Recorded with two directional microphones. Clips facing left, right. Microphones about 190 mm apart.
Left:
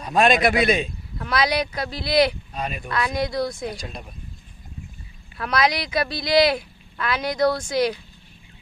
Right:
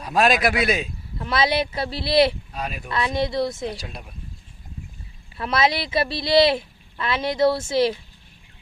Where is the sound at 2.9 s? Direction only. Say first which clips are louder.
Right 1 dB; 25° right (ahead or behind).